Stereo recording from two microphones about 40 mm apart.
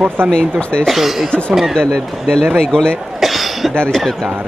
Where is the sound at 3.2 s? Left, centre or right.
Centre.